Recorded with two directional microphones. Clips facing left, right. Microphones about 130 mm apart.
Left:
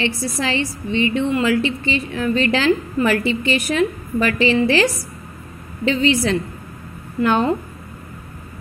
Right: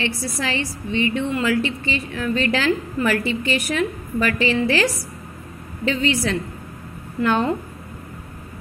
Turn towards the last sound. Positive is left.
turn(degrees=20)  # may be behind; listen again after turning